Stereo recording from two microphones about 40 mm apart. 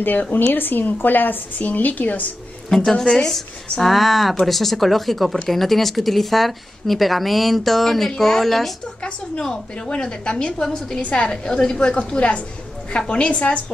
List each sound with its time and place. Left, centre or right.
0.4 s a woman's voice: left
2.7 s a woman's voice: centre
9.4 s a woman's voice: centre
11.0 s a woman's voice: left